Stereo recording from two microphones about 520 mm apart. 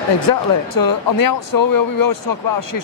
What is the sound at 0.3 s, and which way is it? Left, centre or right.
Speech, left.